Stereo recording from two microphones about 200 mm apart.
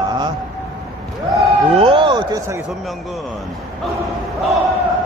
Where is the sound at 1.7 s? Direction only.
30° right (ahead or behind).